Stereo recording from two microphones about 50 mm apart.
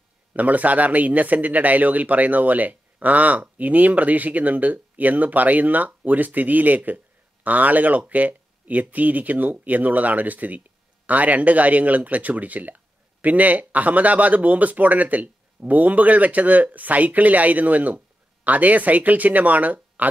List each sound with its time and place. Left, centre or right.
0.3 s speech: right